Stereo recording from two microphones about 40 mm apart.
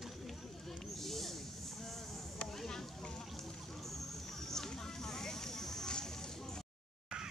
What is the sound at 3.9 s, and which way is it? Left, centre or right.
Vehicle, centre.